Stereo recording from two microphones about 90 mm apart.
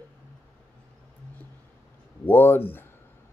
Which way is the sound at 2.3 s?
25° left (ahead or behind).